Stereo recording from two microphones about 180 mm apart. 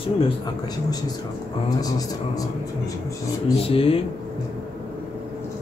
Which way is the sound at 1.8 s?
20° left (ahead or behind).